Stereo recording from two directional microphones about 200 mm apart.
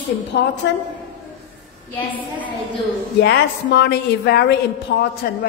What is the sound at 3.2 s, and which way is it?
Speech, 55° left (ahead or behind).